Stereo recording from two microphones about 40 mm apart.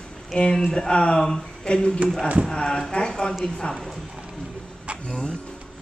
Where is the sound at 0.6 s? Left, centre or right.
Centre.